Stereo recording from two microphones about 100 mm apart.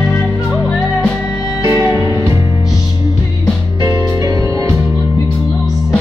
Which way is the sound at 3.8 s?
40° right (ahead or behind).